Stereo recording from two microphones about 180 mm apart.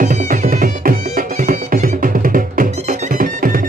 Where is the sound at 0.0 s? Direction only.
45° right (ahead or behind).